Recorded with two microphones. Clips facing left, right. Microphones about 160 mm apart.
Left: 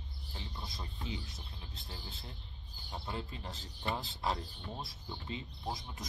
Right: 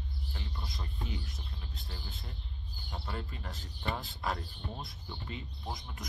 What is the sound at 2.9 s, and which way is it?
Speech, 20° left (ahead or behind).